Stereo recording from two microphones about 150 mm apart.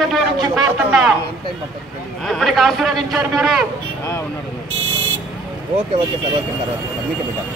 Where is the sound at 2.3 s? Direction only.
Centre (ahead or behind).